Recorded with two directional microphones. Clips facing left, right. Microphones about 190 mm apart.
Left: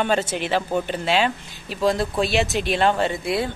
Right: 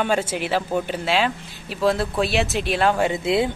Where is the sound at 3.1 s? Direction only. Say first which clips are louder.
Right 3 dB; 20° right (ahead or behind).